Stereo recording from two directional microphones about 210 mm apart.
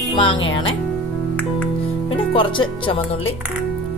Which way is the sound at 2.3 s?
25° left (ahead or behind).